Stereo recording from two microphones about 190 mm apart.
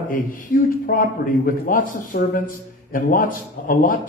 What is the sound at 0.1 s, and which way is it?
Speech, 45° left (ahead or behind).